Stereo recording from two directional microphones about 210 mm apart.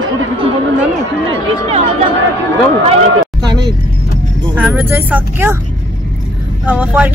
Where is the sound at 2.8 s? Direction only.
25° right (ahead or behind).